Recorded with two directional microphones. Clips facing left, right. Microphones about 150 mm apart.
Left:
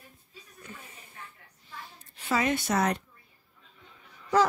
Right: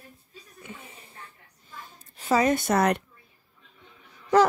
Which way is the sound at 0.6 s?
25° right (ahead or behind).